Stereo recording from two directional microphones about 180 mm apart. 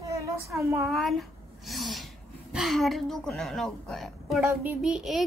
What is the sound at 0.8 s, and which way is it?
Speech, centre (ahead or behind).